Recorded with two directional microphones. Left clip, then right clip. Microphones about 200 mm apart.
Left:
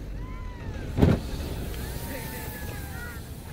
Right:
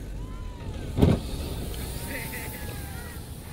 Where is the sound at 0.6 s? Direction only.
5° right (ahead or behind).